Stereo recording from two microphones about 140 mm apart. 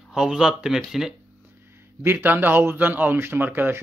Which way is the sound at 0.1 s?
5° right (ahead or behind).